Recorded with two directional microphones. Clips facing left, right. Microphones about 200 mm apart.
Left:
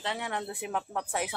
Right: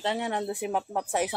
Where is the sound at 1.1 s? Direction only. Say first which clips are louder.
Right 5 dB; 35° right (ahead or behind).